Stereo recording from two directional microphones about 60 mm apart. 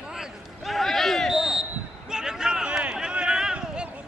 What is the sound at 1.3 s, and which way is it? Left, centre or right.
Basketball bounce, centre.